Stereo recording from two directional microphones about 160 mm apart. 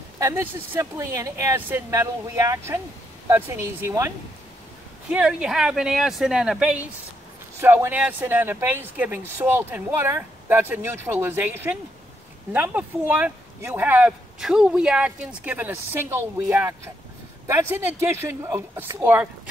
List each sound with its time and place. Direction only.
0.2 s speech: 20° right (ahead or behind)
5.1 s speech: 5° right (ahead or behind)